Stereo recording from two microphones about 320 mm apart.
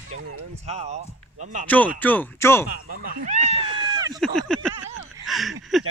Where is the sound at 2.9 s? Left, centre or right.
Right.